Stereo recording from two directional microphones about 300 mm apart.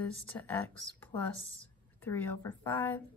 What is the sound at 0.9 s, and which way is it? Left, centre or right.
Speech, centre.